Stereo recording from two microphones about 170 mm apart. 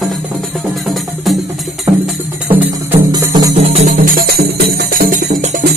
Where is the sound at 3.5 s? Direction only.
40° right (ahead or behind).